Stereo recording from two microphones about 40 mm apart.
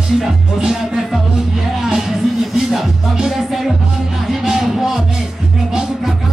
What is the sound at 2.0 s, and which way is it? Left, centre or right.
Music, centre.